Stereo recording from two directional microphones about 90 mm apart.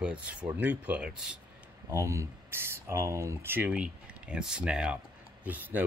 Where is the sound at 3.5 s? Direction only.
15° right (ahead or behind).